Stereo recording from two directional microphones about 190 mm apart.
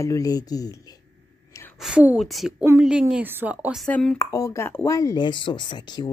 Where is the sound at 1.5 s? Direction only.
15° left (ahead or behind).